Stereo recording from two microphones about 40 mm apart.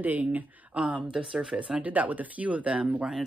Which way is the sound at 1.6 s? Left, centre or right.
Right.